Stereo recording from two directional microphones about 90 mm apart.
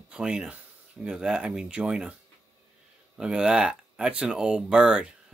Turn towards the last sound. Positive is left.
turn(degrees=-10)  # may be behind; listen again after turning